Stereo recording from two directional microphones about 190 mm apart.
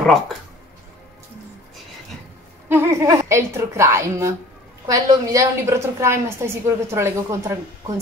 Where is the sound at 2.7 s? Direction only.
15° right (ahead or behind).